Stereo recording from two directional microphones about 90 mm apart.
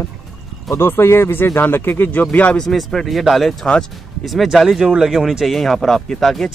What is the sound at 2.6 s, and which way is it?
Speech, centre (ahead or behind).